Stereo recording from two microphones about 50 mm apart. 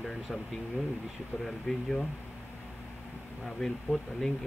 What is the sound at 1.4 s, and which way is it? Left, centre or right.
Speech, centre.